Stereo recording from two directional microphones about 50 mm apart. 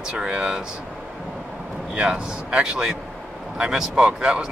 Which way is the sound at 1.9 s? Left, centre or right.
Centre.